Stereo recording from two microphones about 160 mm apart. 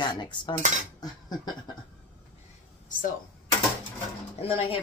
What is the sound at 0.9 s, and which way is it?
Cutlery, 25° left (ahead or behind).